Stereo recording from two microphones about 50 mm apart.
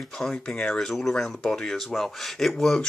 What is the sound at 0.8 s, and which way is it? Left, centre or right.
Speech, centre.